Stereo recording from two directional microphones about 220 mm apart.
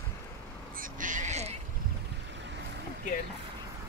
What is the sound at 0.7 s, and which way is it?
Quack, 35° right (ahead or behind).